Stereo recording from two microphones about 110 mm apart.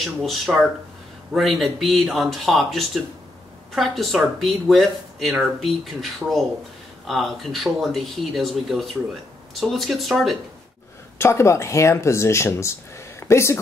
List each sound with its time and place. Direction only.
0.0 s speech: centre (ahead or behind)
11.1 s speech: 25° left (ahead or behind)